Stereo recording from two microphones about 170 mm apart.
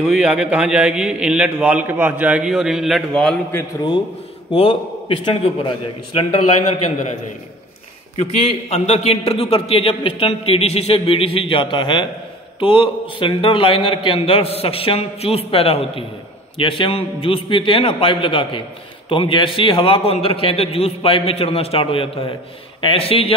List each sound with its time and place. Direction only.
0.0 s a man's voice: centre (ahead or behind)
4.6 s a man's voice: 30° left (ahead or behind)
8.2 s a man's voice: 40° left (ahead or behind)